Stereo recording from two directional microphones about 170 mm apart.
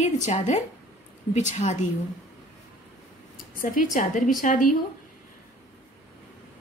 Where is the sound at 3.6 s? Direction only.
50° left (ahead or behind).